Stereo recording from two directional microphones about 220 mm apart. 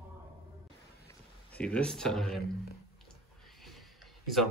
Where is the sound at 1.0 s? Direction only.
5° left (ahead or behind).